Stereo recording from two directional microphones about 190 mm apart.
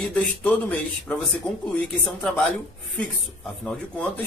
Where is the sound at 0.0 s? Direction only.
5° left (ahead or behind).